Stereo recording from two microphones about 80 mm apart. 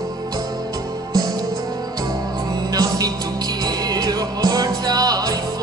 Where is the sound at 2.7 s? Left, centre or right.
Right.